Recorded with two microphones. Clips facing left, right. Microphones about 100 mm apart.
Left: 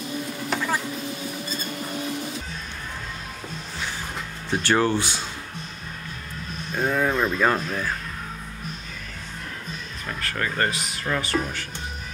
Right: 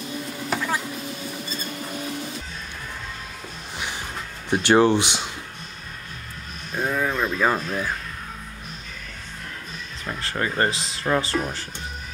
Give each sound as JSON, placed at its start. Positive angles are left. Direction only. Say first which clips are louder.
{"t": 0.0, "sound": "rodents", "louder": "left 1 dB", "side_deg": 0}
{"t": 4.5, "sound": "speech", "louder": "right 4 dB", "side_deg": -20}
{"t": 6.7, "sound": "a sound", "louder": "left 1 dB", "side_deg": 0}
{"t": 10.0, "sound": "speech", "louder": "right 2 dB", "side_deg": -20}